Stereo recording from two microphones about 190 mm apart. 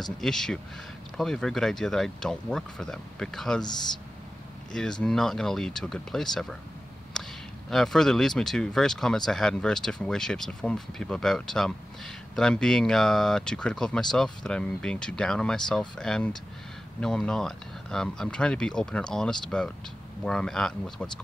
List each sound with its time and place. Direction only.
0.0 s speech: 5° left (ahead or behind)
4.7 s speech: 5° left (ahead or behind)
7.2 s a sound: 5° left (ahead or behind)
7.7 s speech: centre (ahead or behind)